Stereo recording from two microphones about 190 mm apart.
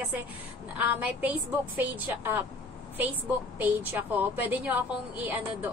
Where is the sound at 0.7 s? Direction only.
10° right (ahead or behind).